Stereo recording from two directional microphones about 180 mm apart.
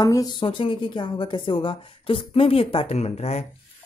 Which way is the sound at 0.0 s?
20° left (ahead or behind).